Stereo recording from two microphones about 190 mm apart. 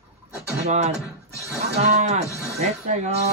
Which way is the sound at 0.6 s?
35° right (ahead or behind).